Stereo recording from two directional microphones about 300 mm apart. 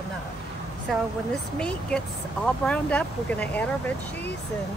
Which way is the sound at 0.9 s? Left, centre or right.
Centre.